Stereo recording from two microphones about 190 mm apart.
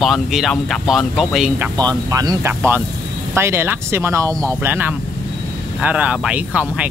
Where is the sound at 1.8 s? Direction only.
20° right (ahead or behind).